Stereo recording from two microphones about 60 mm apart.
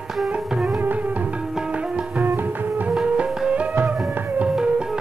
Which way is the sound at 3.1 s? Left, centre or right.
Centre.